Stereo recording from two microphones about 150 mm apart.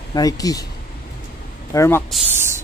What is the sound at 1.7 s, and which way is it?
Speech, 15° left (ahead or behind).